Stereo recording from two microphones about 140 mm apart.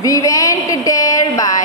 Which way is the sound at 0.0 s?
25° left (ahead or behind).